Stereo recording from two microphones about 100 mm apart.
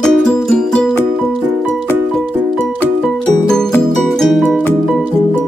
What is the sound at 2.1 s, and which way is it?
Music, 5° left (ahead or behind).